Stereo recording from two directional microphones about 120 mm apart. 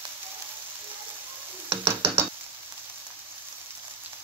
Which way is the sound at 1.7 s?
20° right (ahead or behind).